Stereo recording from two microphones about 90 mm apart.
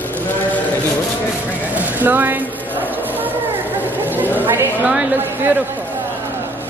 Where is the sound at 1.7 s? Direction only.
20° right (ahead or behind).